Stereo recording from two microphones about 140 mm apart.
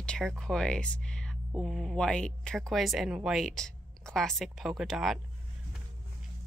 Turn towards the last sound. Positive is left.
turn(degrees=0)  # may be behind; listen again after turning